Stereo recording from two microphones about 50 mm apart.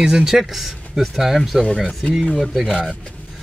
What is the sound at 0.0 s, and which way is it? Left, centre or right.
Speech, centre.